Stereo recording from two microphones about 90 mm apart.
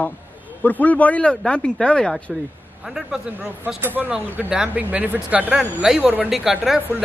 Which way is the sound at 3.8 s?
20° right (ahead or behind).